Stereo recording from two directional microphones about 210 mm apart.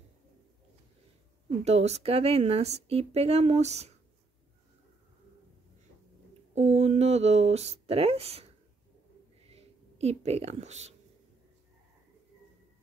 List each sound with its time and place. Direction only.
1.6 s a woman's voice: 30° right (ahead or behind)
6.5 s a woman's voice: 30° right (ahead or behind)
9.5 s speech: 30° right (ahead or behind)